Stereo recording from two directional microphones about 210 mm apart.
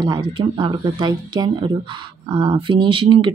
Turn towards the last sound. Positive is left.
turn(degrees=-25)  # may be behind; listen again after turning